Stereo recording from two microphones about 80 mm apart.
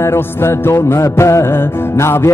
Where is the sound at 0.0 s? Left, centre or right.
Left.